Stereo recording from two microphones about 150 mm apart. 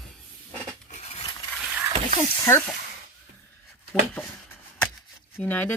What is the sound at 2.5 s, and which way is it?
Speech, 15° left (ahead or behind).